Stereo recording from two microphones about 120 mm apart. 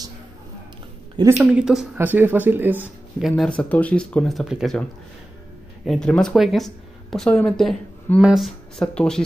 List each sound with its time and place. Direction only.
1.4 s speech: 10° right (ahead or behind)
2.0 s speech: 15° right (ahead or behind)
3.2 s speech: centre (ahead or behind)
3.4 s speech: 10° left (ahead or behind)
5.9 s speech: 5° left (ahead or behind)